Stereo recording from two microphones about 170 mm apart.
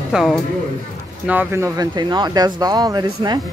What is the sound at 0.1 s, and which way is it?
Speech, centre (ahead or behind).